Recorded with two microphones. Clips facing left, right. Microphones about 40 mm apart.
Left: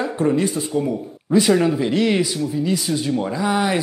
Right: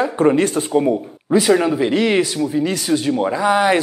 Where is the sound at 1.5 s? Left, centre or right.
Centre.